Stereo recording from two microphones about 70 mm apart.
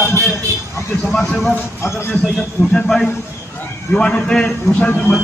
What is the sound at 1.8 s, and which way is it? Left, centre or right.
Speech, left.